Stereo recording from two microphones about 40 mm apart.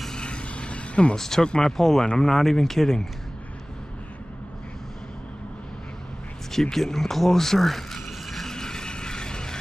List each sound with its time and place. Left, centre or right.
0.1 s vehicle: left
1.1 s speech: centre
6.5 s speech: centre
8.5 s a sound: centre